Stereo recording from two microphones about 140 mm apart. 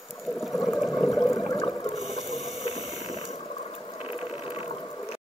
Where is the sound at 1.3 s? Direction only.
25° left (ahead or behind).